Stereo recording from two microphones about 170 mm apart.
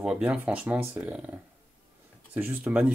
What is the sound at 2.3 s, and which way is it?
Speech, 10° right (ahead or behind).